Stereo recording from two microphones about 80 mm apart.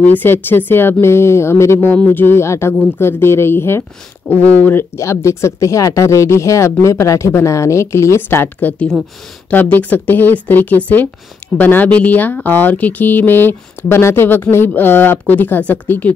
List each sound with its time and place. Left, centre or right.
0.0 s speech: left
4.2 s speech: centre
4.6 s speech: left
4.9 s speech: left; by 16.1 s centre